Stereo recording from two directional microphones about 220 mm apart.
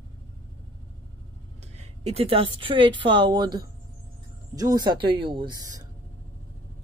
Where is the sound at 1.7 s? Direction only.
30° right (ahead or behind).